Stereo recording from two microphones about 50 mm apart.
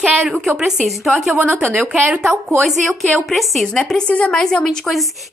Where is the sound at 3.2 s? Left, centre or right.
Centre.